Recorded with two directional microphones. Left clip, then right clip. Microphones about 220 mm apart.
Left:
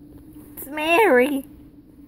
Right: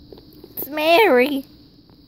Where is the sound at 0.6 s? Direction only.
30° right (ahead or behind).